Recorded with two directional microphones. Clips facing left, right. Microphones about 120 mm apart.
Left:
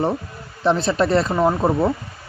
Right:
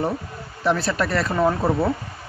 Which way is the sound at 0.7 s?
25° left (ahead or behind).